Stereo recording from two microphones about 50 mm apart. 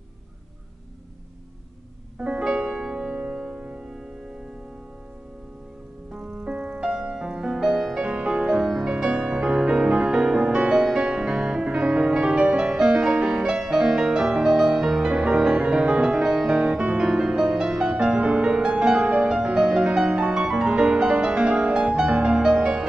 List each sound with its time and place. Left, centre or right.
2.1 s music: centre
6.4 s music: right
8.0 s music: right
8.6 s music: centre